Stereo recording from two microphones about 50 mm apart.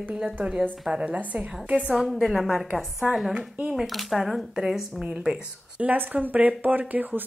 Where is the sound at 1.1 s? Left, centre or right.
Right.